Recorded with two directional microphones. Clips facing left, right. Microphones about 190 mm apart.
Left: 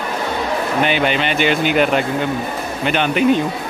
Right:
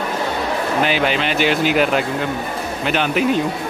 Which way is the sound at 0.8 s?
Centre (ahead or behind).